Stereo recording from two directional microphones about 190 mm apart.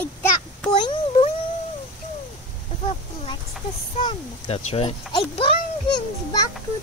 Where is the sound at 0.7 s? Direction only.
25° left (ahead or behind).